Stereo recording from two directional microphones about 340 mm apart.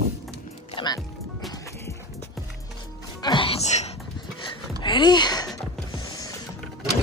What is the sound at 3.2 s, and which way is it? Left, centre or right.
Music, centre.